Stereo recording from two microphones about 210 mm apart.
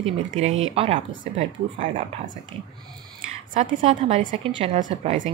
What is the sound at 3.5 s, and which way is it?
A woman's voice, 30° right (ahead or behind).